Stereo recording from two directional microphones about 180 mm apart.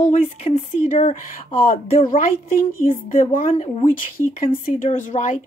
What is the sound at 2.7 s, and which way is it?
Speech, 50° left (ahead or behind).